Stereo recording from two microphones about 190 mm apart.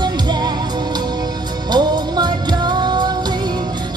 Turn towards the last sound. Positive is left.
turn(degrees=-25)  # may be behind; listen again after turning